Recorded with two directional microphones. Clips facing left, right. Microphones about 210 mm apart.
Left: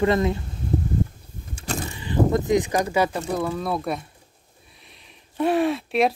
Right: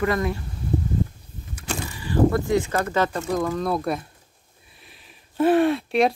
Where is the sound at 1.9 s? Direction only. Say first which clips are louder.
Right 1 dB; 20° left (ahead or behind); by 4.1 s centre (ahead or behind).